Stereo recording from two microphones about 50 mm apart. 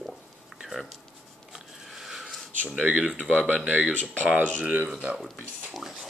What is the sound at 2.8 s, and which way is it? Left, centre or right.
Speech, right.